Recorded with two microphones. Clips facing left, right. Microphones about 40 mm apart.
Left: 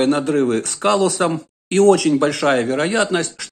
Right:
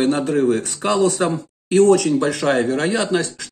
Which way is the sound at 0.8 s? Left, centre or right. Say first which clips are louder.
Left 2 dB; left.